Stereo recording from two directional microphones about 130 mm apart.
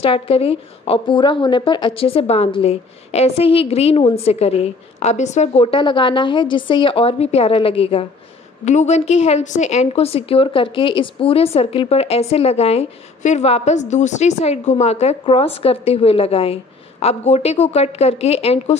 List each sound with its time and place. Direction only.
0.0 s a woman's voice: 45° left (ahead or behind)
5.7 s a woman's voice: 40° left (ahead or behind)
8.6 s a woman's voice: 60° left (ahead or behind)